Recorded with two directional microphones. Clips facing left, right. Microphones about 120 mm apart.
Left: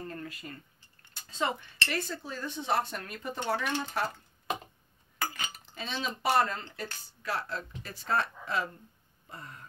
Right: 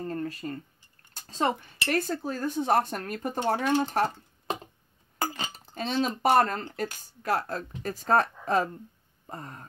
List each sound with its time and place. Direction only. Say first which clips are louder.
0.1 s a sound: right 9 dB; 35° right (ahead or behind)
1.1 s speech: right 5 dB; 40° right (ahead or behind)
5.2 s cutlery: right 4 dB; 30° right (ahead or behind)
5.8 s speech: right 8 dB; 45° right (ahead or behind)